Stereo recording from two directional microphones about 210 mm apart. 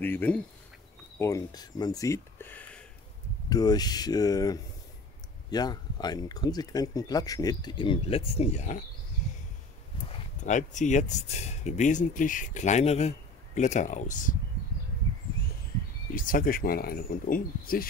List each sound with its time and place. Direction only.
0.0 s speech: 10° left (ahead or behind); by 8.8 s 35° left (ahead or behind)
9.9 s a sound: 25° left (ahead or behind)
10.4 s speech: 35° left (ahead or behind)
16.1 s speech: 40° left (ahead or behind)